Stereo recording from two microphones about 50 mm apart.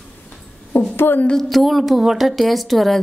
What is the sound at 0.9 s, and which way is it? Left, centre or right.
Speech, left.